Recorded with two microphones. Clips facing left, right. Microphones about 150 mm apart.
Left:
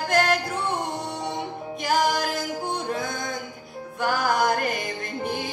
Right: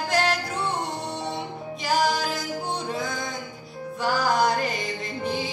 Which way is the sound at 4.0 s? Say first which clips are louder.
Even; 55° left (ahead or behind).